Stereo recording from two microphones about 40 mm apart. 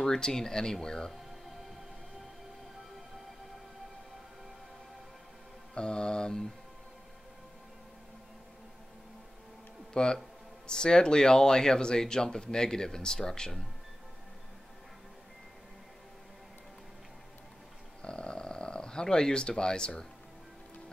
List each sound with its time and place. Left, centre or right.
0.0 s speech: centre
5.8 s mantra: left
9.9 s speech: centre
18.0 s snoring: left